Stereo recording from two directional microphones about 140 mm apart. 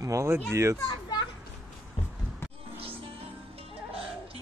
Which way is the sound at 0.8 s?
30° left (ahead or behind).